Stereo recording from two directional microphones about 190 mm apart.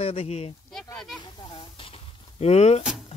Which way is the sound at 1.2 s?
25° left (ahead or behind).